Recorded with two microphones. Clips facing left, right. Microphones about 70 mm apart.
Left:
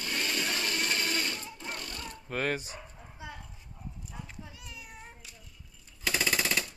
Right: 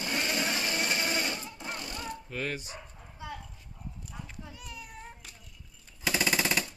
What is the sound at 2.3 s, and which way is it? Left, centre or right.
Dog, left.